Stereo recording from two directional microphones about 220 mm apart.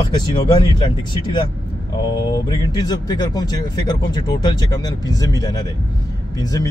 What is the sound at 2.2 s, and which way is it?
Speech, 20° left (ahead or behind).